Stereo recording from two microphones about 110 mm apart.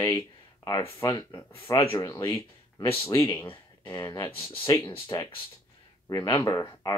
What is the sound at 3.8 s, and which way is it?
Speech, 35° left (ahead or behind).